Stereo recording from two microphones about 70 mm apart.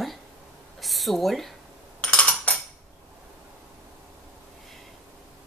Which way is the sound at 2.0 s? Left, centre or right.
Centre.